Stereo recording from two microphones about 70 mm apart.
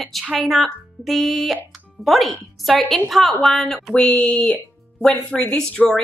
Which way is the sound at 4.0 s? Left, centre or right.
Centre.